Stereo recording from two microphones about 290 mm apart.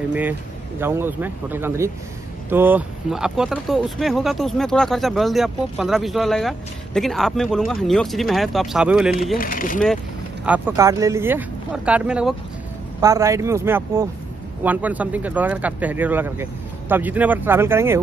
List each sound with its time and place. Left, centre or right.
0.1 s speech: centre
9.4 s speech: left
10.4 s speech: centre